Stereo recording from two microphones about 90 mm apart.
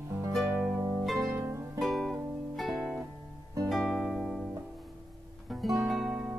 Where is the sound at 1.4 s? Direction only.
30° right (ahead or behind).